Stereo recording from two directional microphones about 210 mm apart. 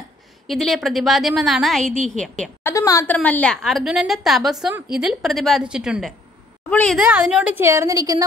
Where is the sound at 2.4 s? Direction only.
10° left (ahead or behind).